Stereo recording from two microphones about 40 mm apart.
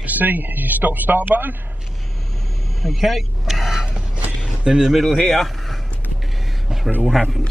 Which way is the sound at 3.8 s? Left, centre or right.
Right.